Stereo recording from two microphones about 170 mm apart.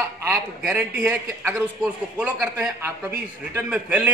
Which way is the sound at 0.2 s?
15° right (ahead or behind).